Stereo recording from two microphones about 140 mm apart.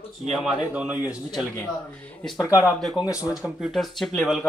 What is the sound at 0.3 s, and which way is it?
Speech, 10° right (ahead or behind).